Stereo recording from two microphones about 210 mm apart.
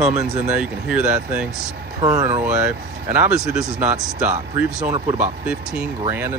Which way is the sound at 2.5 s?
5° right (ahead or behind).